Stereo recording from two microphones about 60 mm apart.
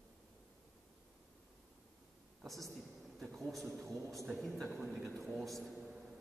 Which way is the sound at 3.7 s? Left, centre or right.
Right.